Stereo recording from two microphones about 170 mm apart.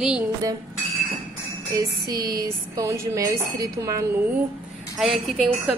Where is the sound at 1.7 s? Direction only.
20° right (ahead or behind).